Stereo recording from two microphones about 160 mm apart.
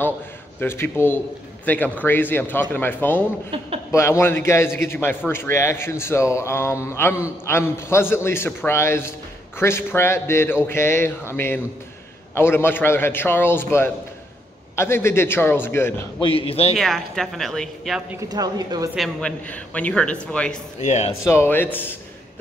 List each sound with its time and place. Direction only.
0.6 s speech: 15° left (ahead or behind)
16.2 s a man's voice: 35° left (ahead or behind)
16.7 s a woman's voice: centre (ahead or behind)
18.1 s speech: 25° right (ahead or behind)
18.9 s speech: 5° left (ahead or behind)
20.8 s speech: 45° left (ahead or behind)
21.3 s speech: 15° left (ahead or behind)